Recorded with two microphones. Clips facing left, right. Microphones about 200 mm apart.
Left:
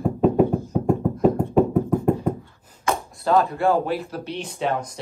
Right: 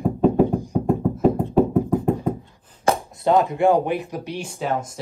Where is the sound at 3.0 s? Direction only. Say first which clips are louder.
Even; 20° right (ahead or behind).